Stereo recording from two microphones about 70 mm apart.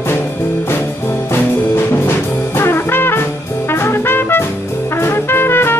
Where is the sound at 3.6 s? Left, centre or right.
Left.